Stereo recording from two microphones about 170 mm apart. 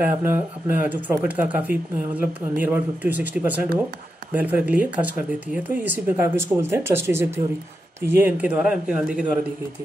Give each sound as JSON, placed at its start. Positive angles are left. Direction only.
{"t": 0.0, "sound": "speech", "side_deg": -10}